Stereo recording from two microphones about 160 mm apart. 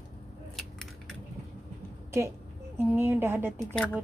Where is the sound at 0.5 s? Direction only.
Centre (ahead or behind).